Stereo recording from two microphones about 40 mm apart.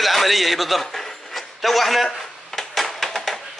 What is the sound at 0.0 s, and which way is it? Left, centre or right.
Speech, centre.